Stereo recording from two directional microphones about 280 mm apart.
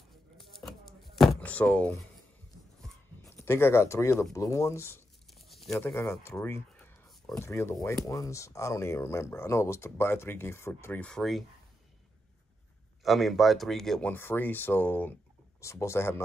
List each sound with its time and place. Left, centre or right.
0.4 s a sound: centre
2.8 s speech: centre
13.0 s speech: centre